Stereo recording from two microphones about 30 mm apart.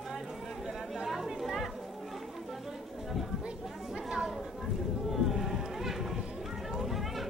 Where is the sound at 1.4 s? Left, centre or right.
Centre.